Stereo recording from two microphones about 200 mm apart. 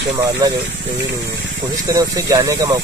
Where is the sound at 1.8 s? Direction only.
15° right (ahead or behind).